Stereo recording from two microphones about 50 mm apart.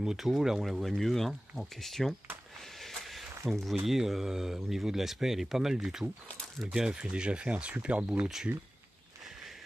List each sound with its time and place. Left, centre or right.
0.0 s speech: centre
2.8 s a sound: centre
3.8 s speech: centre; by 8.3 s right